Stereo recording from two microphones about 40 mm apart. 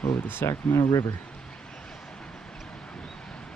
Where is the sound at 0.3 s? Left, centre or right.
Left.